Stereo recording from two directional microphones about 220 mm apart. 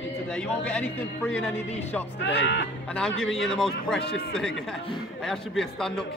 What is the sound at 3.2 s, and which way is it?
A man's voice, centre (ahead or behind).